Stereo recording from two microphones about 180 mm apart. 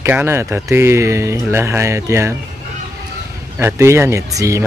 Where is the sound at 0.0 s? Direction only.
15° right (ahead or behind).